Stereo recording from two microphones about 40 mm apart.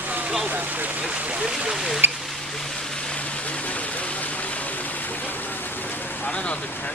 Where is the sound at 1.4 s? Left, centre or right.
Right.